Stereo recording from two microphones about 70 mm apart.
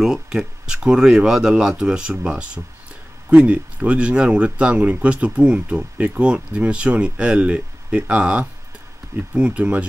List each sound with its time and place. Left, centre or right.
0.0 s speech: centre